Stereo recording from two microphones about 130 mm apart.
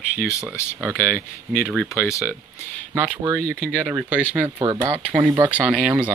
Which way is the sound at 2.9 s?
20° right (ahead or behind).